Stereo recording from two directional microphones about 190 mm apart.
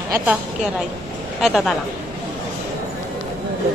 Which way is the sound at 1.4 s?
Centre (ahead or behind).